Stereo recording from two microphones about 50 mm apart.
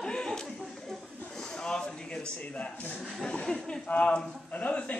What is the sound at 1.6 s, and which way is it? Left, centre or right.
A man's voice, centre.